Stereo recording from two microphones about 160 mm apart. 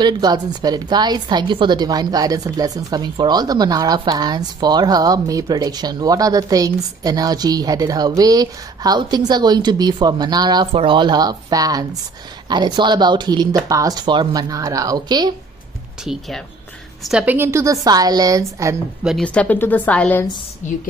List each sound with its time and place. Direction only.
0.0 s a woman's voice: 25° right (ahead or behind)
16.0 s a woman's voice: centre (ahead or behind); by 18.8 s 20° right (ahead or behind)
19.0 s a woman's voice: 5° left (ahead or behind)